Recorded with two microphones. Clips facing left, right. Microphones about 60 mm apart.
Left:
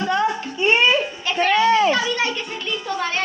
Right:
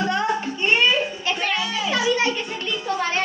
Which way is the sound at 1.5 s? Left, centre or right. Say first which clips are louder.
Left 9 dB; left.